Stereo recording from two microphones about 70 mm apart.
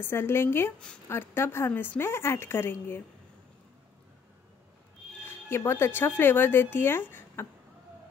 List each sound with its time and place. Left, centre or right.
0.0 s speech: left
5.2 s speech: left